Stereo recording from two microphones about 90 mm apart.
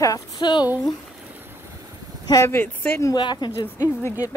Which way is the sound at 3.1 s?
55° left (ahead or behind).